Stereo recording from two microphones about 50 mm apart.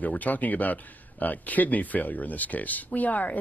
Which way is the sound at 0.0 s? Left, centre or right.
Left.